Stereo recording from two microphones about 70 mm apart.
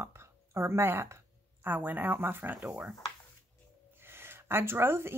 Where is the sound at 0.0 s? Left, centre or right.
Right.